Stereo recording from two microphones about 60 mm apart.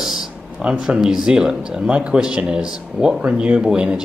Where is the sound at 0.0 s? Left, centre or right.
Centre.